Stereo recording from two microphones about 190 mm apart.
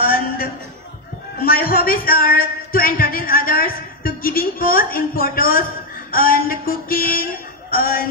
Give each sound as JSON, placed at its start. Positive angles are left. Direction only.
{"t": 0.0, "sound": "a sound", "side_deg": 50}
{"t": 1.4, "sound": "a man's voice", "side_deg": 50}
{"t": 6.1, "sound": "music", "side_deg": 50}